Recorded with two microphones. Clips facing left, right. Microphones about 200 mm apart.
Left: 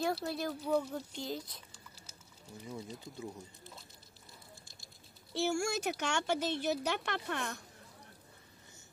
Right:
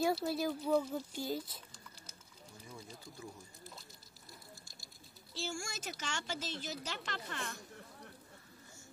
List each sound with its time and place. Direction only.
0.0 s speech: 5° right (ahead or behind)
5.3 s speech: 65° left (ahead or behind)